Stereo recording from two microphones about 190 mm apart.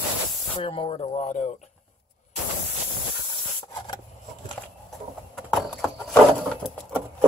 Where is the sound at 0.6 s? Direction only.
30° left (ahead or behind).